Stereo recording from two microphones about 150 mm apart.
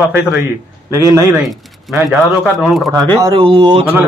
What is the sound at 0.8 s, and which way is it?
Speech, 20° right (ahead or behind).